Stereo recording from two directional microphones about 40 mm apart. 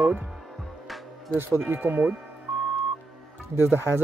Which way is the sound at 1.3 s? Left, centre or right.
Right.